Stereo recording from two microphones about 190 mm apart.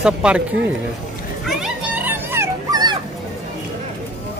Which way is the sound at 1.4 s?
5° right (ahead or behind).